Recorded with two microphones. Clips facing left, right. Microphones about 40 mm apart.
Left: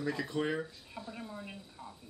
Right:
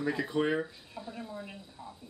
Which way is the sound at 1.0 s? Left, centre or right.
Centre.